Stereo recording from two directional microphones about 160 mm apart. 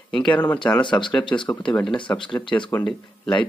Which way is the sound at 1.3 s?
15° left (ahead or behind).